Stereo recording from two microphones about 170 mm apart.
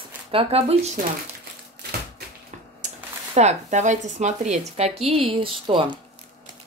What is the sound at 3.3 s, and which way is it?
Speech, 40° right (ahead or behind).